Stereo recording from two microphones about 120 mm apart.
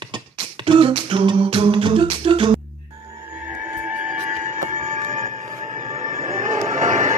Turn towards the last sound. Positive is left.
turn(degrees=-90)